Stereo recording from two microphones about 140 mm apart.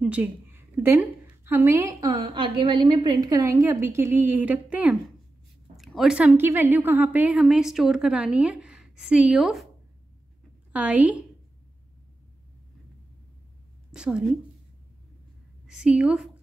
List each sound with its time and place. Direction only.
0.0 s a woman's voice: 10° right (ahead or behind)
10.7 s a woman's voice: 10° right (ahead or behind)
13.9 s a woman's voice: 5° right (ahead or behind)
15.6 s a woman's voice: 5° right (ahead or behind)